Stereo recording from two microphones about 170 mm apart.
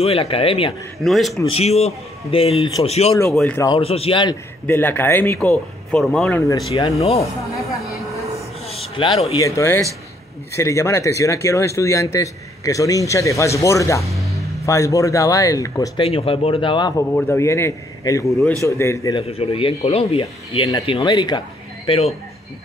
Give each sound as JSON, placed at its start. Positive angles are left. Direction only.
{"t": 0.0, "sound": "speech", "side_deg": 35}
{"t": 1.0, "sound": "speech", "side_deg": 0}
{"t": 1.5, "sound": "speech", "side_deg": 40}
{"t": 3.3, "sound": "speech", "side_deg": 0}
{"t": 3.7, "sound": "speech", "side_deg": 35}
{"t": 4.6, "sound": "speech", "side_deg": 10}
{"t": 6.7, "sound": "speech", "side_deg": 35}
{"t": 7.5, "sound": "a sound", "side_deg": 20}
{"t": 8.6, "sound": "speech", "side_deg": 35}
{"t": 16.0, "sound": "speech", "side_deg": 35}
{"t": 17.1, "sound": "speech", "side_deg": 15}
{"t": 19.1, "sound": "speech", "side_deg": 35}